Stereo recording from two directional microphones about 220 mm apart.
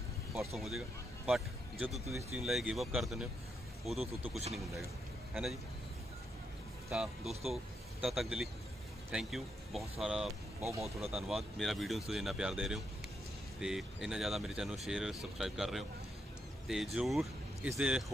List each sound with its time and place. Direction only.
0.6 s speech: centre (ahead or behind)
1.9 s speech: 30° right (ahead or behind)
2.1 s speech: 5° right (ahead or behind)
5.3 s speech: centre (ahead or behind)
6.9 s speech: centre (ahead or behind)